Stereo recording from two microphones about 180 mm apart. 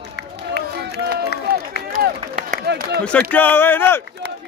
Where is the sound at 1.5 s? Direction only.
60° right (ahead or behind).